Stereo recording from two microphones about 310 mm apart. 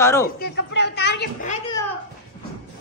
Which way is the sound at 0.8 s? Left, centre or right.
Left.